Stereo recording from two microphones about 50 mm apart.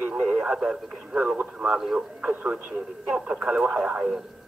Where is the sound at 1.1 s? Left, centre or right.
Right.